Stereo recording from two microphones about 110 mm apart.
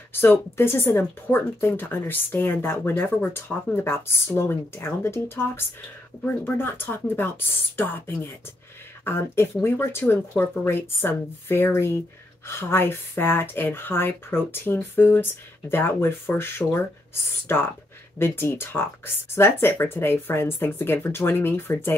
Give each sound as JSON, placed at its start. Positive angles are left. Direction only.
{"t": 0.1, "sound": "speech", "side_deg": 20}